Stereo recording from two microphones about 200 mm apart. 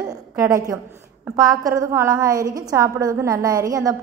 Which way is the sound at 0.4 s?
15° right (ahead or behind).